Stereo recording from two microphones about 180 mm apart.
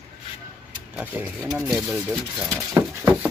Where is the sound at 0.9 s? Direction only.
10° right (ahead or behind).